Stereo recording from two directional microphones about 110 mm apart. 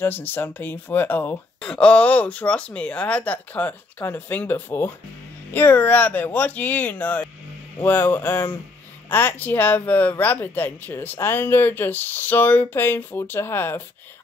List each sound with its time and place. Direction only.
0.0 s speech: 20° left (ahead or behind)